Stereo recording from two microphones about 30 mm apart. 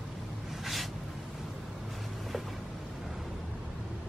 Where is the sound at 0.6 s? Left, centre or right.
Centre.